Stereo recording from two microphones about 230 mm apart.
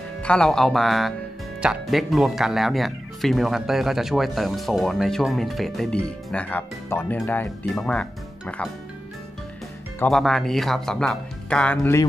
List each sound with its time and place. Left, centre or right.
0.2 s speech: centre
9.9 s speech: centre